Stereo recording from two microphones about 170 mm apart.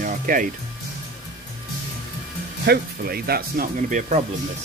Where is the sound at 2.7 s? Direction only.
65° right (ahead or behind); by 4.2 s 45° right (ahead or behind).